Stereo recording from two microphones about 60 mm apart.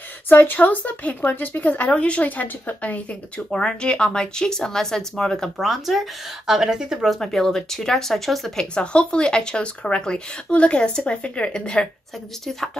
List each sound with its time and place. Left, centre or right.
0.3 s speech: left
3.5 s speech: centre
5.6 s speech: centre
7.2 s speech: centre
8.7 s speech: centre